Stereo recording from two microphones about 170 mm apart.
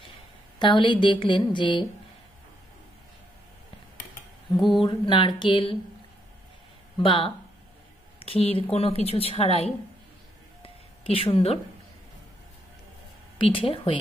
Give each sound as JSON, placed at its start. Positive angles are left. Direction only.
{"t": 0.6, "sound": "a woman's voice", "side_deg": 30}
{"t": 4.6, "sound": "mantra", "side_deg": 0}
{"t": 4.8, "sound": "a woman's voice", "side_deg": 25}
{"t": 7.0, "sound": "a woman's voice", "side_deg": 30}
{"t": 10.6, "sound": "a sound", "side_deg": 35}
{"t": 13.4, "sound": "a woman's voice", "side_deg": 30}